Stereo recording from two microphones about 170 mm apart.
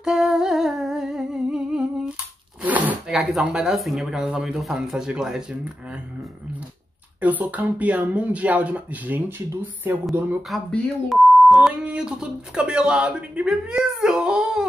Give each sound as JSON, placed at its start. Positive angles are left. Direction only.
{"t": 0.0, "sound": "humming", "side_deg": -5}
{"t": 2.6, "sound": "speech", "side_deg": -10}
{"t": 7.2, "sound": "speech", "side_deg": -10}
{"t": 10.5, "sound": "speech", "side_deg": 0}